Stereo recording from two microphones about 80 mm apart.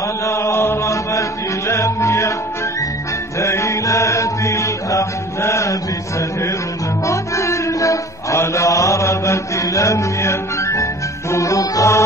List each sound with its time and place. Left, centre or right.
0.2 s chant: left
1.7 s music: left
3.3 s mantra: left